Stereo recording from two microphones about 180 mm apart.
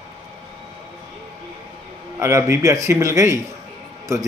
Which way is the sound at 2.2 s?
15° right (ahead or behind).